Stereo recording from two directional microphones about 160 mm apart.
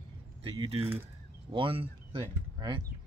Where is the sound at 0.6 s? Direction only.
35° right (ahead or behind).